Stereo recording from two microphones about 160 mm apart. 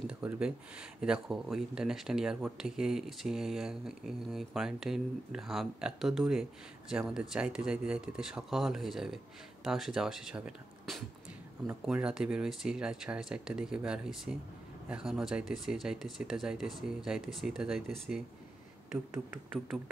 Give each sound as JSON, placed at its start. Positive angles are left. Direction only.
{"t": 0.0, "sound": "speech", "side_deg": -5}